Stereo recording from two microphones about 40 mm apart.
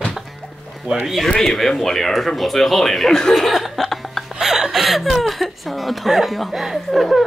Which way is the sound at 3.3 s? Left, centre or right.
Centre.